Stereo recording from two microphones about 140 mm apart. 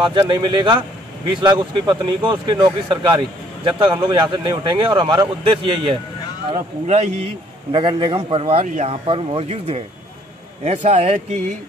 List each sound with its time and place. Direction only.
0.0 s speech: 35° right (ahead or behind)
6.5 s speech: 50° right (ahead or behind)
7.7 s speech: 35° right (ahead or behind)
8.6 s speech: 60° right (ahead or behind)
9.0 s speech: 45° right (ahead or behind)